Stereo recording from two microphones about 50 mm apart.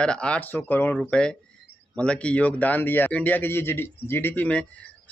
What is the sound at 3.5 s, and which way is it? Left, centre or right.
Speech, left.